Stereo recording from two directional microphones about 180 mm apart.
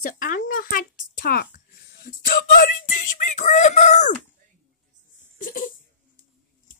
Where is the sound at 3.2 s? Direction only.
45° left (ahead or behind).